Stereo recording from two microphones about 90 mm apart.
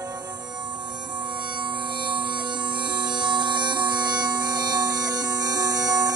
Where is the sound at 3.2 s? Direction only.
60° right (ahead or behind).